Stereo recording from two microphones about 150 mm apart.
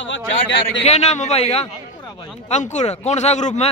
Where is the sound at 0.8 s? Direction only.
45° left (ahead or behind).